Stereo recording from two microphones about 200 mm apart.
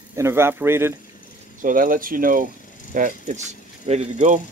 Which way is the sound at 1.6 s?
45° right (ahead or behind).